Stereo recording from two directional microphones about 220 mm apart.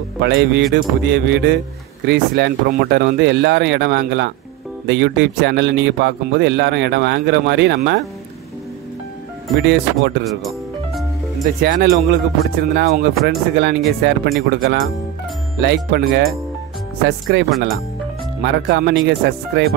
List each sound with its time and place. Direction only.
0.2 s a man's voice: 55° right (ahead or behind)
9.6 s a man's voice: 55° right (ahead or behind)
11.4 s a man's voice: 40° right (ahead or behind)
17.3 s a man's voice: 45° right (ahead or behind)